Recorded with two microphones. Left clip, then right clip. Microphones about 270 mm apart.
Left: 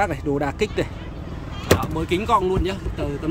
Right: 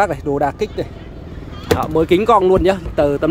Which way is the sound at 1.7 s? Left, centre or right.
Centre.